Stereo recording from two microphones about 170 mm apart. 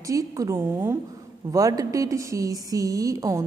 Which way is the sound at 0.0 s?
20° right (ahead or behind).